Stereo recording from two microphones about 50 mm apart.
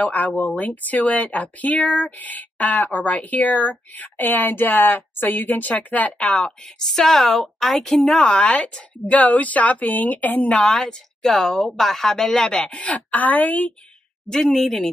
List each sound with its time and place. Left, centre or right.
0.0 s a woman's voice: left
6.1 s a woman's voice: centre
6.9 s a woman's voice: centre
8.2 s a woman's voice: left
10.6 s speech: centre; by 13.7 s left
14.2 s speech: centre